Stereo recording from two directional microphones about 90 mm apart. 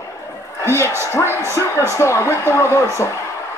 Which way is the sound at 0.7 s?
30° left (ahead or behind).